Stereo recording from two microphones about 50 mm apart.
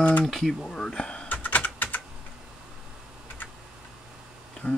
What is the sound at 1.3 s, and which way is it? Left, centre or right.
Typing, left.